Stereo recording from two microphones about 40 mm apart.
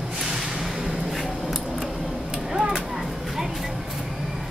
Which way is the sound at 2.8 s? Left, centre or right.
Centre.